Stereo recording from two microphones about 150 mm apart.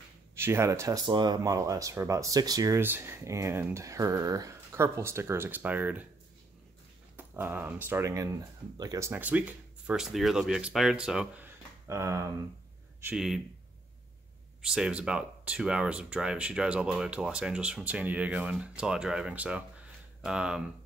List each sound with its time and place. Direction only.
0.4 s speech: 15° right (ahead or behind)
7.2 s speech: 15° right (ahead or behind)
9.1 s speech: 10° right (ahead or behind)
13.1 s speech: 5° right (ahead or behind)
14.7 s speech: 5° right (ahead or behind)